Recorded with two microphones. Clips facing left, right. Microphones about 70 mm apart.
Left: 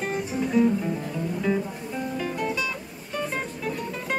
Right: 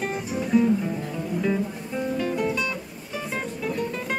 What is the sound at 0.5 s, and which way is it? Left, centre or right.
Music, centre.